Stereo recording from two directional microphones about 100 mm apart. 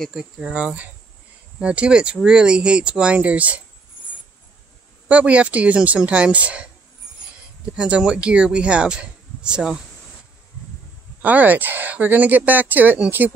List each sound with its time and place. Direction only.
0.0 s speech: 5° right (ahead or behind)
5.0 s speech: 15° right (ahead or behind)
11.2 s speech: 15° right (ahead or behind)